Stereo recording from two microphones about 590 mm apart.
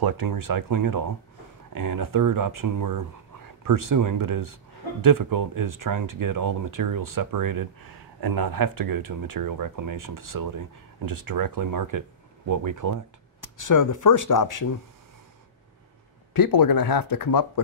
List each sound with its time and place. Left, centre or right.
0.0 s speech: right
13.4 s speech: left
16.3 s speech: left